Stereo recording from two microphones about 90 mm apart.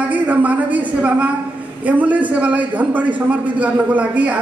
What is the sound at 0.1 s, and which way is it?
A man's voice, 15° right (ahead or behind).